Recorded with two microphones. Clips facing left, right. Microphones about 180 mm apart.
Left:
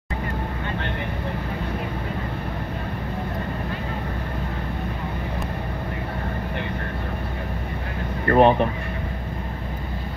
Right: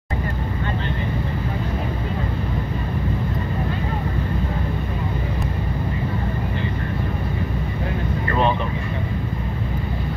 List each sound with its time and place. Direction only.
8.3 s vehicle: 55° left (ahead or behind)